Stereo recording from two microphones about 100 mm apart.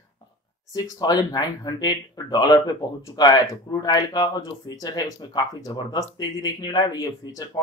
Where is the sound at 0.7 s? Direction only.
40° left (ahead or behind).